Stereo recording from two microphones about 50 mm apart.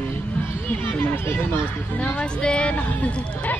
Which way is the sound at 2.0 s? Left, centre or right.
Left.